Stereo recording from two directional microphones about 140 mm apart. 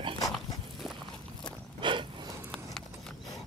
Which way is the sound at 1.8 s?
35° right (ahead or behind).